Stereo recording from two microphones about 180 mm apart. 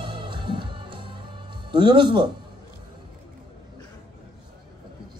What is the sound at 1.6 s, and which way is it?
Speech, 25° right (ahead or behind).